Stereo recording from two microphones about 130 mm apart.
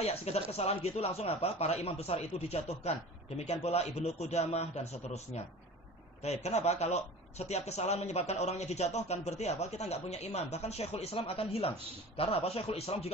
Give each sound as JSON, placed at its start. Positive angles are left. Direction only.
{"t": 0.0, "sound": "a man's voice", "side_deg": 50}